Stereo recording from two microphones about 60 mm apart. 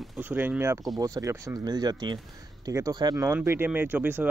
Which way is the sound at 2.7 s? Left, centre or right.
Right.